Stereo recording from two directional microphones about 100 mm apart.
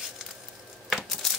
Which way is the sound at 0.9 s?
Centre (ahead or behind).